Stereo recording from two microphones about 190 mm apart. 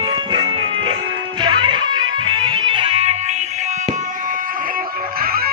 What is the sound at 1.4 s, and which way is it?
Music, 25° right (ahead or behind).